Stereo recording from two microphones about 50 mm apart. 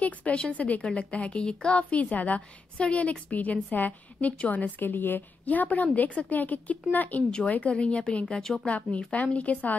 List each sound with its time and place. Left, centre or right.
0.0 s a woman's voice: left
5.4 s a woman's voice: left